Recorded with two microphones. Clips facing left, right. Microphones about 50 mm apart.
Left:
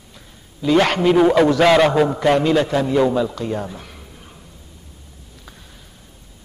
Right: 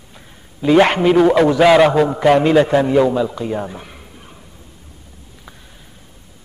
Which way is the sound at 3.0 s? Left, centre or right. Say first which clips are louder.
Right 2 dB; centre.